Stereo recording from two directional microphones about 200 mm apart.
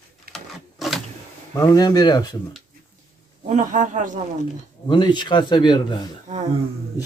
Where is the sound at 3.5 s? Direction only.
40° right (ahead or behind).